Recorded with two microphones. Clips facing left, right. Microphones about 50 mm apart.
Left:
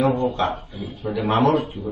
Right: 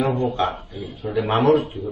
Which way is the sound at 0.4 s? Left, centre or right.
Centre.